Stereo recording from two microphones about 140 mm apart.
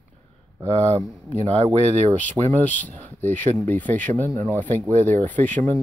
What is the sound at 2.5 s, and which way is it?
Speech, 10° left (ahead or behind).